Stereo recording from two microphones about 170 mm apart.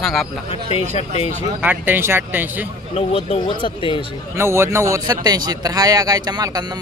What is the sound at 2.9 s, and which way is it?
Speech, 40° left (ahead or behind).